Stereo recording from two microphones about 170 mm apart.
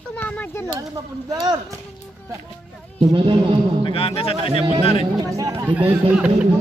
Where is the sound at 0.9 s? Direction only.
20° right (ahead or behind).